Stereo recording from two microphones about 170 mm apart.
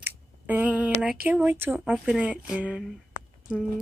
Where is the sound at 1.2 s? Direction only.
10° right (ahead or behind).